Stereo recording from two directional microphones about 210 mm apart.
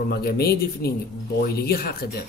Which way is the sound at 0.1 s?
50° left (ahead or behind).